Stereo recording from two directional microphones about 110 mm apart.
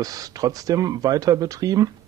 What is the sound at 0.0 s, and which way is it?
Speech, 35° right (ahead or behind).